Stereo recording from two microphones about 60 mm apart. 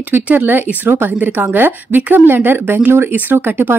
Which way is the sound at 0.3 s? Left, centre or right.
Right.